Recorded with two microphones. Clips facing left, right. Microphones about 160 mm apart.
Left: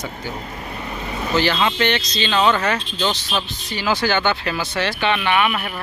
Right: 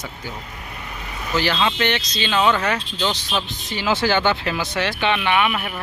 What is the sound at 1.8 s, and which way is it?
Speech, 10° right (ahead or behind).